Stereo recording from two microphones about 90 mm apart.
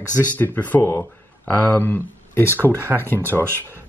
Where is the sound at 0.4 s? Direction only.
20° left (ahead or behind).